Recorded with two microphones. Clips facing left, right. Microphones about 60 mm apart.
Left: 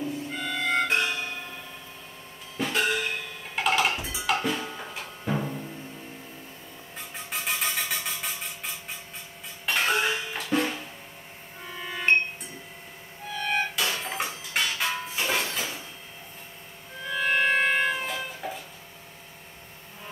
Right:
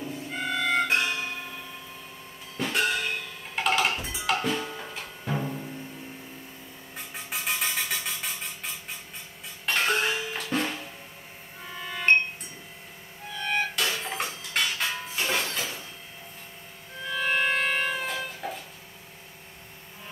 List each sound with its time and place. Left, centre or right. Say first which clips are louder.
0.0 s music: left 1 dB; centre
2.5 s music: left 1 dB; centre
7.2 s a sound: left 1 dB; centre
9.7 s music: even; centre
13.7 s a sound: even; centre
17.1 s music: left 2 dB; centre
17.6 s siren: left 3 dB; centre
17.8 s cat: left 1 dB; centre